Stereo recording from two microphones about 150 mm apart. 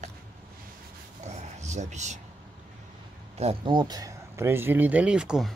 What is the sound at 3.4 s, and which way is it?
Speech, 35° right (ahead or behind).